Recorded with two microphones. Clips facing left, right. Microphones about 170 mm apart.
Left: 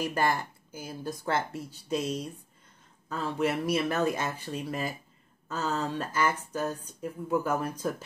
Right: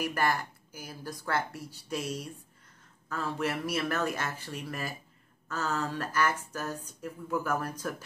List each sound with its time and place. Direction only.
0.0 s speech: 20° left (ahead or behind)